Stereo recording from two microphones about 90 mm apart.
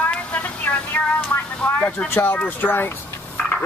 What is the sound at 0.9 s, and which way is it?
Speech, 20° left (ahead or behind).